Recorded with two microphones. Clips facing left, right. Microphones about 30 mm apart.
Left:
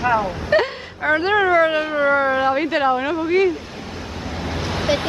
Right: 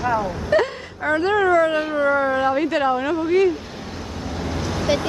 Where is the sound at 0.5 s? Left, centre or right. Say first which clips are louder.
Left 1 dB; left.